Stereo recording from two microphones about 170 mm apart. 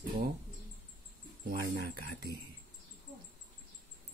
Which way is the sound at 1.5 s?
65° right (ahead or behind).